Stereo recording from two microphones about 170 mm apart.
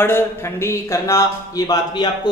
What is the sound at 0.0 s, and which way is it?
Speech, 15° left (ahead or behind).